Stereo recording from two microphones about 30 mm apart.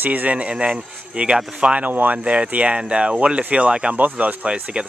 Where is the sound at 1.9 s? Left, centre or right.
Right.